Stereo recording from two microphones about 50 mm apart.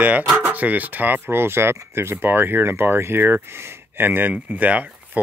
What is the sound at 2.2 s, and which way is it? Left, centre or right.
Speech, right.